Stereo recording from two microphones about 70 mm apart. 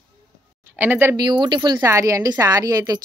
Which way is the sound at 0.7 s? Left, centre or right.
Right.